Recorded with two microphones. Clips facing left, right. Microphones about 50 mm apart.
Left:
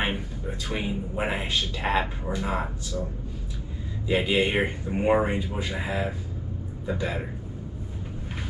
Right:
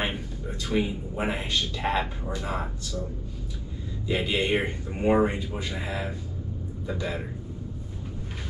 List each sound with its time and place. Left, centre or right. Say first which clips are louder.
0.0 s speech: left 2 dB; centre
4.0 s speech: left 3 dB; centre